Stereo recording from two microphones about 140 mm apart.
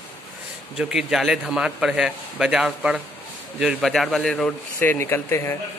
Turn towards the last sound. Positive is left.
turn(degrees=15)  # may be behind; listen again after turning